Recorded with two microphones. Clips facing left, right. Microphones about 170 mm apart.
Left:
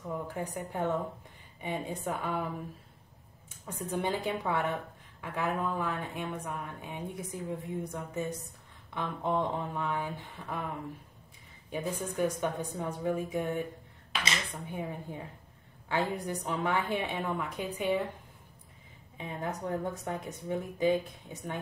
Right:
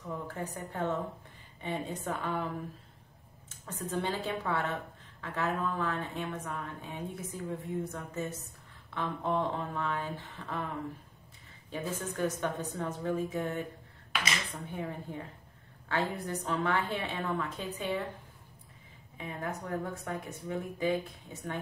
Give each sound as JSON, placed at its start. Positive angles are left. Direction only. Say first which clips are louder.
{"t": 0.3, "sound": "a woman's voice", "louder": "left 2 dB", "side_deg": 15}
{"t": 3.4, "sound": "a woman's voice", "louder": "left 1 dB", "side_deg": 10}
{"t": 11.7, "sound": "a woman's voice", "louder": "left 2 dB", "side_deg": 15}
{"t": 14.7, "sound": "a woman's voice", "louder": "even", "side_deg": 15}
{"t": 19.1, "sound": "speech", "louder": "left 1 dB", "side_deg": 20}